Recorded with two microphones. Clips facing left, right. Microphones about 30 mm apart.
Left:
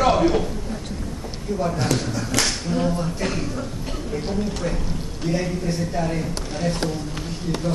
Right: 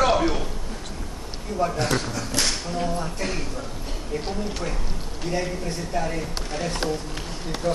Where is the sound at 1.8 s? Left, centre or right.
Right.